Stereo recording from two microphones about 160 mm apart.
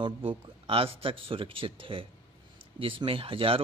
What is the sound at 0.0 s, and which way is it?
Speech, 35° right (ahead or behind).